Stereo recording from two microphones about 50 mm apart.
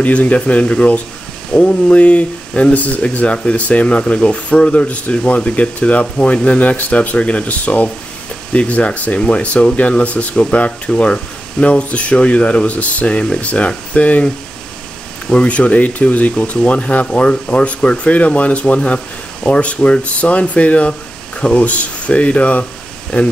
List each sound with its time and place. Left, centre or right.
0.0 s speech: left